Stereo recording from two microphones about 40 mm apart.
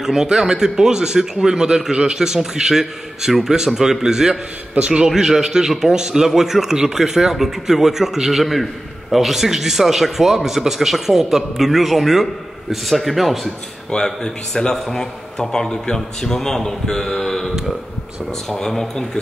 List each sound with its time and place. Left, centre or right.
0.0 s a man's voice: centre
4.7 s a man's voice: right
5.1 s a man's voice: centre
14.0 s a man's voice: centre
18.5 s a man's voice: centre